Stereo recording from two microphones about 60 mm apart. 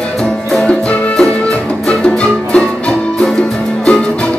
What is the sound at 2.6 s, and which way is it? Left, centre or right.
Music, centre.